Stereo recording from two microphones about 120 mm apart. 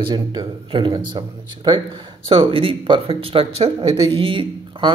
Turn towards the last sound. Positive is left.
turn(degrees=-45)  # may be behind; listen again after turning